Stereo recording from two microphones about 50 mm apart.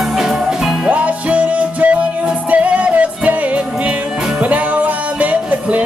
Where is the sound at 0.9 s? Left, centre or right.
Right.